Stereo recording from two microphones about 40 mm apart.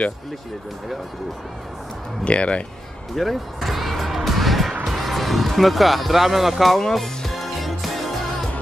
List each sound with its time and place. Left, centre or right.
2.2 s speech: left
3.2 s music: centre
4.8 s speech: centre
6.8 s music: centre